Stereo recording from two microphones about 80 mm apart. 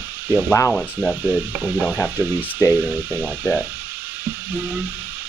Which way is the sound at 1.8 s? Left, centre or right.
Centre.